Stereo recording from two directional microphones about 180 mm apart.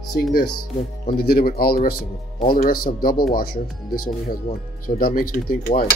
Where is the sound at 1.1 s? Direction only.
55° left (ahead or behind).